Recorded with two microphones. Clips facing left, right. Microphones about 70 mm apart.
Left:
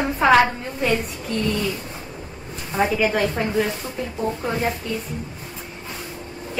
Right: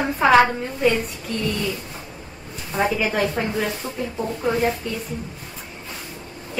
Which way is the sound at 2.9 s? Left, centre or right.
Centre.